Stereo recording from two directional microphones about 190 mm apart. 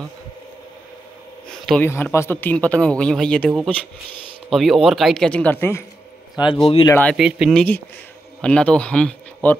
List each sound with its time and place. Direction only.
1.8 s speech: 10° left (ahead or behind)
6.4 s speech: 25° left (ahead or behind)
6.9 s speech: 10° left (ahead or behind)
7.2 s speech: 5° right (ahead or behind)